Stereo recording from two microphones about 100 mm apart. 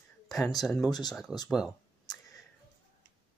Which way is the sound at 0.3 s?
40° left (ahead or behind).